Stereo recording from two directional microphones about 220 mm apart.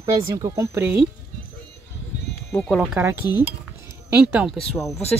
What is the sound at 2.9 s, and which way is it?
Speech, 10° right (ahead or behind).